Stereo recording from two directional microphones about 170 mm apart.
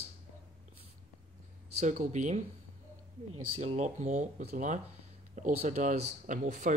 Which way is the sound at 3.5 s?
45° right (ahead or behind).